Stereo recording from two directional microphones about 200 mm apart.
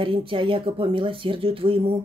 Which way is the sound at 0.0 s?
25° right (ahead or behind).